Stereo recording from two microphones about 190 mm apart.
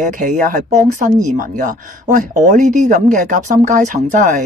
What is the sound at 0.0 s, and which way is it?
Speech, 40° right (ahead or behind).